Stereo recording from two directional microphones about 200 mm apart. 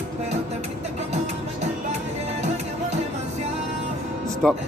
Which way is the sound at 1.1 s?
35° right (ahead or behind).